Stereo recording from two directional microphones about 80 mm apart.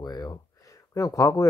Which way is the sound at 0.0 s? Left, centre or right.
Left.